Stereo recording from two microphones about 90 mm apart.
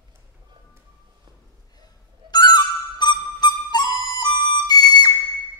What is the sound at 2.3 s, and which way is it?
Music, 50° left (ahead or behind).